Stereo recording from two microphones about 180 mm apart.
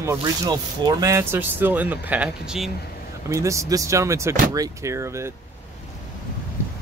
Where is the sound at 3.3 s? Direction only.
15° right (ahead or behind).